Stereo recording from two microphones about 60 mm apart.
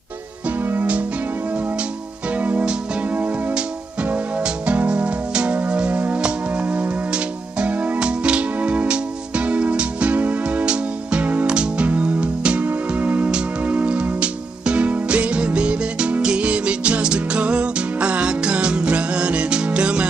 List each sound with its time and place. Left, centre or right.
2.3 s music: right